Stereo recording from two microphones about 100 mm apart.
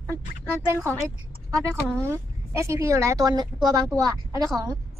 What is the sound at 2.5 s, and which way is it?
Speech, 30° right (ahead or behind).